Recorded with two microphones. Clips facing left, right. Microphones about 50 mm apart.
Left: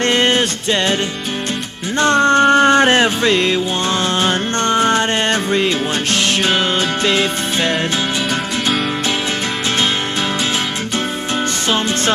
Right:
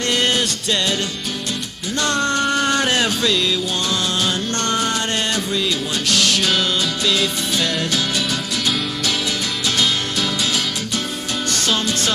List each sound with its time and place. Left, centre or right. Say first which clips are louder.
0.0 s music: left 5 dB; left
2.0 s music: left 8 dB; left